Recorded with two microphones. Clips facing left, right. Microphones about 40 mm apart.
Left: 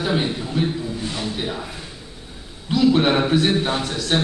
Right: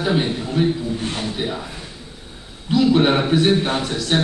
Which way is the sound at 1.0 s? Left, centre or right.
Right.